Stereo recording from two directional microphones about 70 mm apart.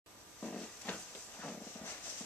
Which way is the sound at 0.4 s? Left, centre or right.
Centre.